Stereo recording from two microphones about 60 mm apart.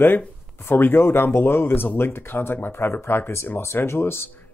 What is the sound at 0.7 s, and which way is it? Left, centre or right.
Speech, left.